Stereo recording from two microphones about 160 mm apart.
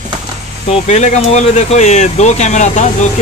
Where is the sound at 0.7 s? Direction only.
45° left (ahead or behind).